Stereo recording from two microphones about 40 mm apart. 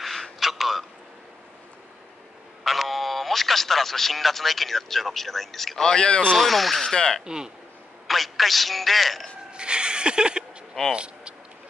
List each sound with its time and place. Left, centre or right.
0.0 s a sound: centre
2.6 s speech: centre
5.9 s speech: left
6.3 s speech: centre
7.2 s speech: centre
8.1 s a man's voice: centre
9.5 s music: right